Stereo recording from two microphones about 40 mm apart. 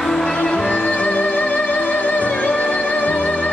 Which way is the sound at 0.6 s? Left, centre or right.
Left.